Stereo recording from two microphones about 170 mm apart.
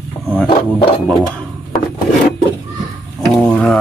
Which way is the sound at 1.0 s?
5° left (ahead or behind).